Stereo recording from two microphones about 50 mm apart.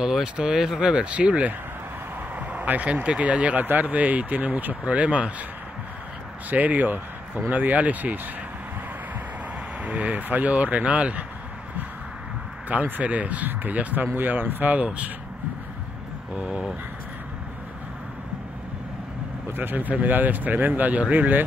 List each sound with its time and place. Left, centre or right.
0.0 s speech: centre
2.3 s a sound: right
3.1 s speech: right
6.5 s speech: right
9.8 s speech: right
13.0 s speech: right
14.8 s speech: right
16.3 s a sound: right
19.5 s speech: right